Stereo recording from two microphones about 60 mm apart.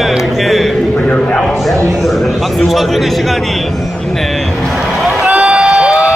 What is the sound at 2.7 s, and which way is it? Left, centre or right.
Speech, centre.